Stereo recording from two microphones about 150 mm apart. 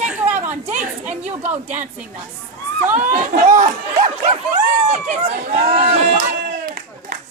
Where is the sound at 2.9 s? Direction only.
60° right (ahead or behind); by 6.2 s 45° right (ahead or behind).